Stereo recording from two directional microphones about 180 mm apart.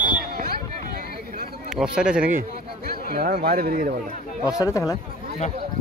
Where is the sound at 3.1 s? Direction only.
60° right (ahead or behind).